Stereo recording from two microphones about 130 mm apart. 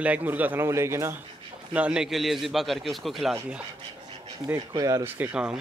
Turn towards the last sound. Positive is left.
turn(degrees=-10)  # may be behind; listen again after turning